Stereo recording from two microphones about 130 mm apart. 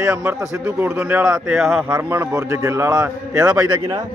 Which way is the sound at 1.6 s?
Centre (ahead or behind).